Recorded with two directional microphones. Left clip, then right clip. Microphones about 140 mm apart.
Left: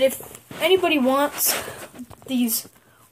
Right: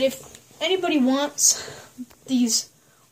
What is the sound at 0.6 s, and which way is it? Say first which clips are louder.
Speech: left 3 dB; 15° left (ahead or behind).